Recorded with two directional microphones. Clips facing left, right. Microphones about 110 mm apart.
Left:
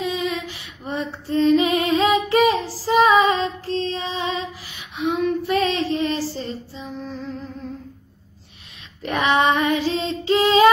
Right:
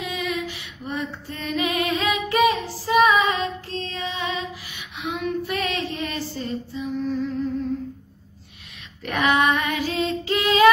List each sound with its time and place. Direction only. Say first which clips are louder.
0.0 s female singing: left 3 dB; 30° left (ahead or behind)
9.0 s female singing: left 2 dB; 30° left (ahead or behind)